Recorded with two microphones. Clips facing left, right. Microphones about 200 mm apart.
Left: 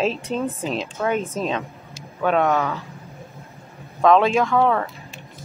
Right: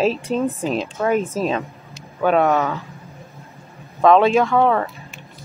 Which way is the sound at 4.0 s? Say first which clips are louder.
Right 3 dB; centre (ahead or behind).